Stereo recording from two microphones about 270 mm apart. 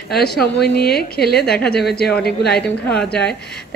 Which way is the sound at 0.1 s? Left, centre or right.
Left.